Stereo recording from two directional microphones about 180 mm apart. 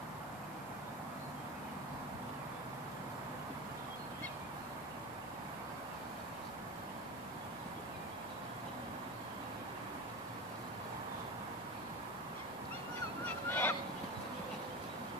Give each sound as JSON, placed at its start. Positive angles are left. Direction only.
{"t": 13.2, "sound": "honk", "side_deg": 10}